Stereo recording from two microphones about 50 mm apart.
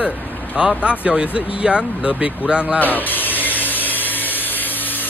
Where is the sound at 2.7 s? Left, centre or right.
Left.